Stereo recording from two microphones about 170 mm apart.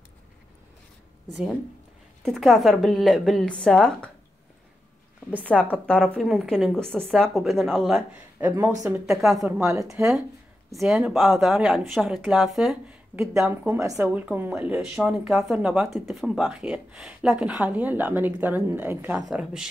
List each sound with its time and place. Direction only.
2.2 s a woman's voice: centre (ahead or behind)
5.4 s a woman's voice: 10° left (ahead or behind)
9.5 s a woman's voice: 20° right (ahead or behind)
10.7 s a woman's voice: centre (ahead or behind)
13.3 s a woman's voice: 15° right (ahead or behind)